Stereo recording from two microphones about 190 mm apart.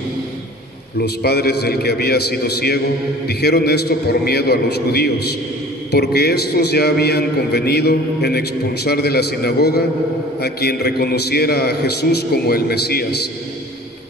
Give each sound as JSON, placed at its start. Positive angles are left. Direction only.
{"t": 1.0, "sound": "a man's voice", "side_deg": 55}